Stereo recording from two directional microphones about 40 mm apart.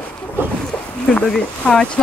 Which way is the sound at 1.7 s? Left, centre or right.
Left.